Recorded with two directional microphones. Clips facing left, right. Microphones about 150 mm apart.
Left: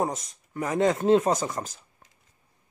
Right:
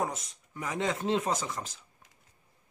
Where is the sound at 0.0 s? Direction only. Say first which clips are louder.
Left 5 dB; 40° left (ahead or behind).